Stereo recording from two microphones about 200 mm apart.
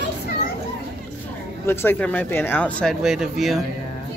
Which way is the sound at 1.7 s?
10° left (ahead or behind).